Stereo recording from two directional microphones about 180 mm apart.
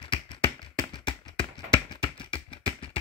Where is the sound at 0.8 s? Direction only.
25° left (ahead or behind).